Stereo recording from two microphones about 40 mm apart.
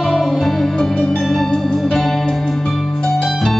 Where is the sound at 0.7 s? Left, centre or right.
Centre.